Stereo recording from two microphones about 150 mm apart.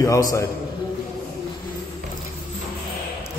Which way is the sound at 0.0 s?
20° left (ahead or behind).